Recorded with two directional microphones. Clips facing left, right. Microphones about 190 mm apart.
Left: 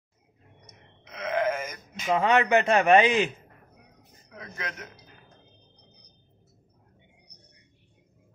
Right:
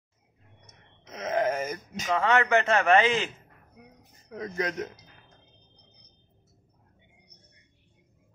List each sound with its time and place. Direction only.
1.1 s wail: 40° right (ahead or behind)
2.0 s a man's voice: 15° left (ahead or behind)
4.3 s a man's voice: 40° right (ahead or behind)